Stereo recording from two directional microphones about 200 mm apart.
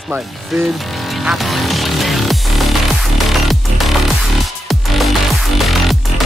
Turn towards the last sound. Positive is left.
turn(degrees=0)  # may be behind; listen again after turning